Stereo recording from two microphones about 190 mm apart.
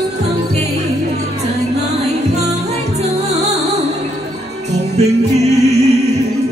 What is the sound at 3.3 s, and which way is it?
Music, 35° right (ahead or behind).